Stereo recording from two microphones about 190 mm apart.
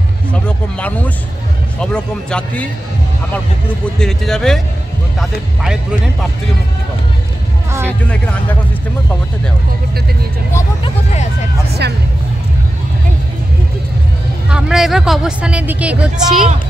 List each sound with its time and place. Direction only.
0.3 s a sound: 5° left (ahead or behind)
1.8 s a woman's voice: 5° left (ahead or behind)
4.0 s a woman's voice: centre (ahead or behind)
8.1 s speech: 5° left (ahead or behind)
11.8 s speech: 60° right (ahead or behind)
14.5 s a woman's voice: centre (ahead or behind)